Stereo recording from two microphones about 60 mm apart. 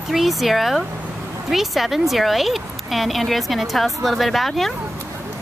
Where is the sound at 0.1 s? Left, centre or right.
Centre.